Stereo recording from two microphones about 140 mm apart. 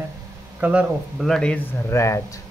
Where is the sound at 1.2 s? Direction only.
5° left (ahead or behind).